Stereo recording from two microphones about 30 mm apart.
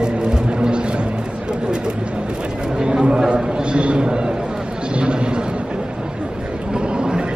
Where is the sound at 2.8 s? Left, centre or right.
Right.